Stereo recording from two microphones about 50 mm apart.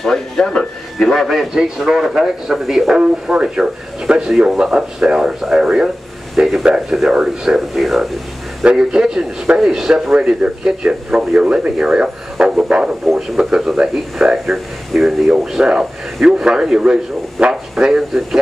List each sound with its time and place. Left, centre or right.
0.0 s a man's voice: centre
3.0 s speech: centre
7.7 s a man's voice: centre
8.6 s a man's voice: centre